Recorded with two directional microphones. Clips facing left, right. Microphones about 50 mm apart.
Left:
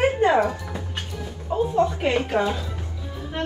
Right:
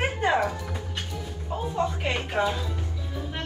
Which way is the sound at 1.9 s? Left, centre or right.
Left.